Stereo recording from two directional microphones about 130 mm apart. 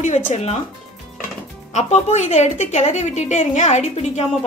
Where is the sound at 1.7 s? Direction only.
60° left (ahead or behind).